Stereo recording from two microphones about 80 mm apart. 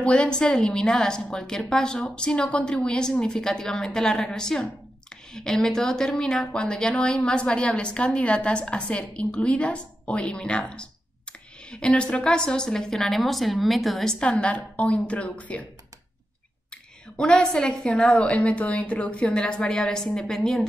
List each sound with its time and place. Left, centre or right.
0.0 s a woman's voice: centre
14.2 s a woman's voice: centre
17.2 s a woman's voice: centre